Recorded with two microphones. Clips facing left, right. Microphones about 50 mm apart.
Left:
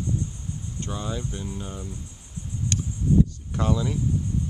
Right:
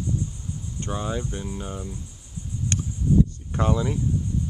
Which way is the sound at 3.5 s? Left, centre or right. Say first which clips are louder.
Right 1 dB; right.